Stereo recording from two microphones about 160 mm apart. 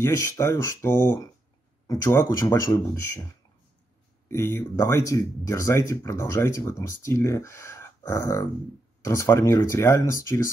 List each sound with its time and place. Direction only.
0.0 s speech: 15° left (ahead or behind)
2.2 s speech: 25° left (ahead or behind)
2.7 s speech: 15° left (ahead or behind)
4.3 s speech: 15° left (ahead or behind)